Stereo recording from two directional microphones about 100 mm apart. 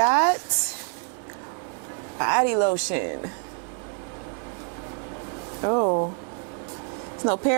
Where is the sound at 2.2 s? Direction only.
15° right (ahead or behind).